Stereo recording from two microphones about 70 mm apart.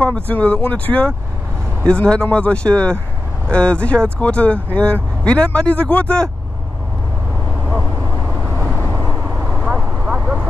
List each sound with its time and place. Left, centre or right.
0.0 s speech: centre
9.4 s vehicle: centre